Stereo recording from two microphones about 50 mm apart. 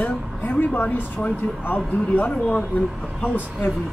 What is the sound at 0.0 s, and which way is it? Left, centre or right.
Speech, left.